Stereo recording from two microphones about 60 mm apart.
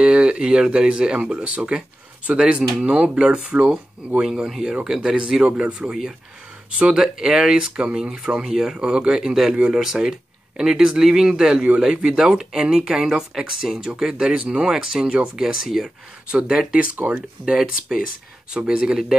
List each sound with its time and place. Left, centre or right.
0.0 s speech: centre
16.3 s speech: centre